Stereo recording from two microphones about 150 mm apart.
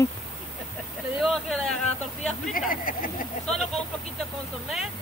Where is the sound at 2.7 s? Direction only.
70° left (ahead or behind).